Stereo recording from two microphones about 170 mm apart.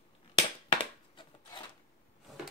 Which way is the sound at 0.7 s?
30° left (ahead or behind).